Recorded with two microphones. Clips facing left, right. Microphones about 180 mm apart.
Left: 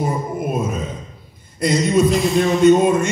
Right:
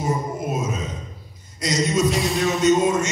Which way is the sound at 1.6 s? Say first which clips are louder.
Left 5 dB; 55° left (ahead or behind).